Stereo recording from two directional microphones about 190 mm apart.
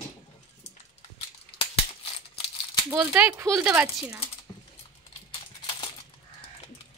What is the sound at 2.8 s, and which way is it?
Speech, 10° right (ahead or behind).